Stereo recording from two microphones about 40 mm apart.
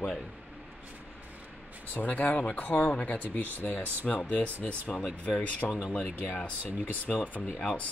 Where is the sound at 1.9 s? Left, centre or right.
Left.